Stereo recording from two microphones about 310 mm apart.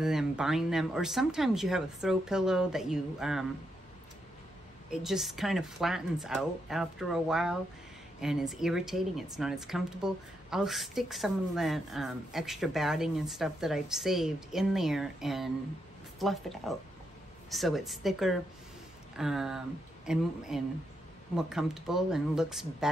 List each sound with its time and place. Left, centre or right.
0.0 s speech: centre
4.9 s speech: centre